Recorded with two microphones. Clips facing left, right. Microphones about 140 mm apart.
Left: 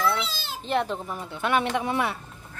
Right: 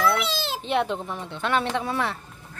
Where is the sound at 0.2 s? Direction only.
75° right (ahead or behind).